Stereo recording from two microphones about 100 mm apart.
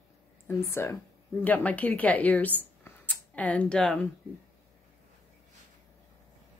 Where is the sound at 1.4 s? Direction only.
15° left (ahead or behind).